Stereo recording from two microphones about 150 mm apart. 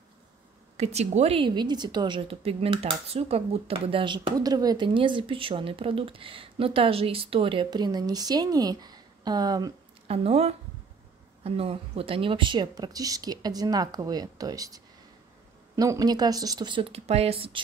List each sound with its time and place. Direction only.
0.7 s a woman's voice: 45° right (ahead or behind); by 9.8 s 25° right (ahead or behind)
10.0 s speech: 40° right (ahead or behind)